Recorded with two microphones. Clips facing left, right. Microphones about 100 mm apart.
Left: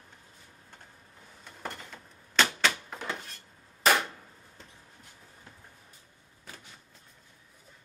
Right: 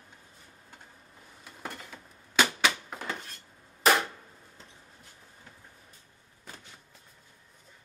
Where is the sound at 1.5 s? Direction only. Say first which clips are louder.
Left 1 dB; 5° right (ahead or behind).